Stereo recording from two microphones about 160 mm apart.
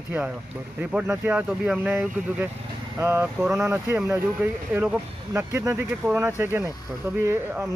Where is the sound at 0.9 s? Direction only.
10° right (ahead or behind).